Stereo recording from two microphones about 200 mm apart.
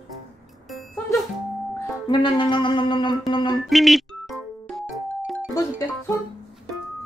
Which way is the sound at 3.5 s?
Centre (ahead or behind).